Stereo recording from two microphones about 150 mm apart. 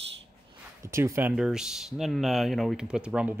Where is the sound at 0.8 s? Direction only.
20° right (ahead or behind).